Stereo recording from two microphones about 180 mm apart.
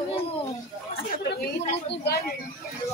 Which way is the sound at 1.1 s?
55° left (ahead or behind).